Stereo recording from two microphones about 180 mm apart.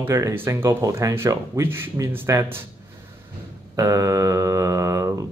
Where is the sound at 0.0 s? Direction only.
15° right (ahead or behind).